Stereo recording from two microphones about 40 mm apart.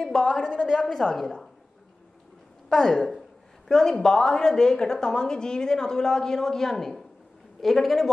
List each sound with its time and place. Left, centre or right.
0.0 s a woman's voice: centre
0.8 s a woman's voice: centre
2.7 s a woman's voice: centre